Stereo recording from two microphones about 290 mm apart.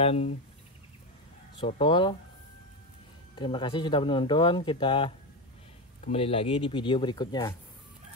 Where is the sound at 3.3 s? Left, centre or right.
Centre.